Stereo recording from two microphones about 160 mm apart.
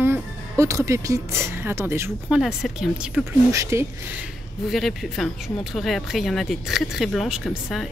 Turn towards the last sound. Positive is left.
turn(degrees=0)  # may be behind; listen again after turning